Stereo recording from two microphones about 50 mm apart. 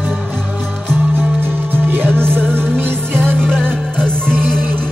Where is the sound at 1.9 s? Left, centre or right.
Right.